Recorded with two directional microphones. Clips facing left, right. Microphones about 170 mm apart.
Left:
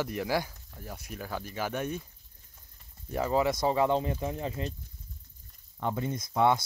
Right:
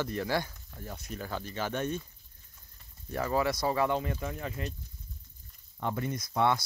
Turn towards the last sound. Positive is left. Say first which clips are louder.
# left 2 dB
turn(degrees=20)  # may be behind; listen again after turning